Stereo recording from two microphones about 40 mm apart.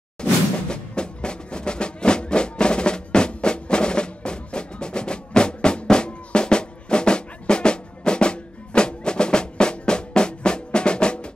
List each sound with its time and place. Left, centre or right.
0.2 s music: left